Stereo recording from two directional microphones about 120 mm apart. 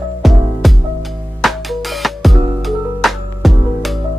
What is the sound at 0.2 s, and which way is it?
Music, centre (ahead or behind).